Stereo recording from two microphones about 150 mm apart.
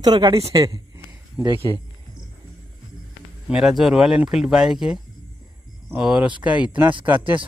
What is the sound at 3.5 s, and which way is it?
Speech, 5° right (ahead or behind).